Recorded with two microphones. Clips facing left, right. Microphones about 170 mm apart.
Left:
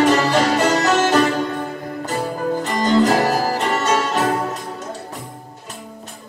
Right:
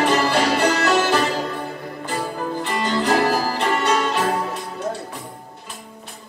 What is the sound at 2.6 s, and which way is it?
Music, 40° left (ahead or behind).